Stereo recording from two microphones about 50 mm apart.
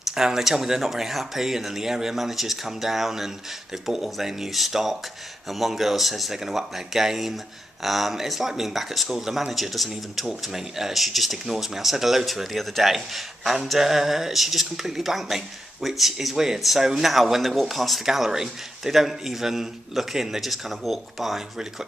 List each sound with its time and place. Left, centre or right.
0.1 s speech: centre